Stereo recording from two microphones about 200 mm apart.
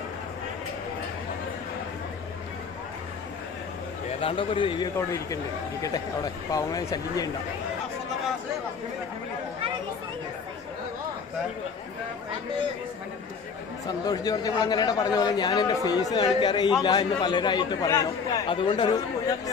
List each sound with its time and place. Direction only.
4.2 s speech: 25° left (ahead or behind)
13.8 s speech: 20° left (ahead or behind)